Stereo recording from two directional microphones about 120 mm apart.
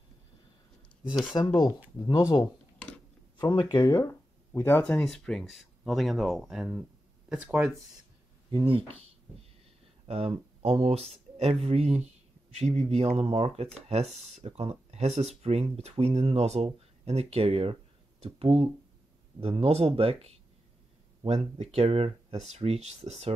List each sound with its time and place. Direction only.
1.1 s speech: 30° left (ahead or behind); by 5.0 s 15° left (ahead or behind)
5.0 s speech: 5° left (ahead or behind); by 7.7 s 15° right (ahead or behind)
8.5 s speech: 45° right (ahead or behind)
10.0 s speech: 55° right (ahead or behind)
21.7 s speech: 55° right (ahead or behind)